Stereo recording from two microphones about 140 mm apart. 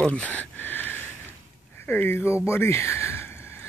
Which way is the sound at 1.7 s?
15° left (ahead or behind).